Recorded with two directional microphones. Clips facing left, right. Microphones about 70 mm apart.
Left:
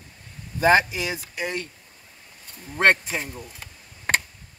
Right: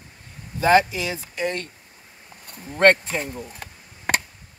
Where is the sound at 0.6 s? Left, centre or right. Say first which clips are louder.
Right 1 dB; left.